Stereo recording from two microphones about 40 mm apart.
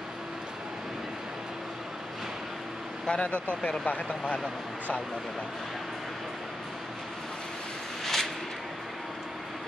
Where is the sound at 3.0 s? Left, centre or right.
Left.